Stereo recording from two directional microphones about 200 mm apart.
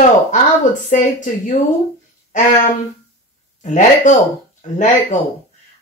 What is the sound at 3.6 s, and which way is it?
A woman's voice, 35° left (ahead or behind).